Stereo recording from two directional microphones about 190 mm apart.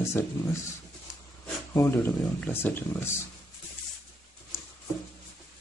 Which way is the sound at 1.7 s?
15° left (ahead or behind).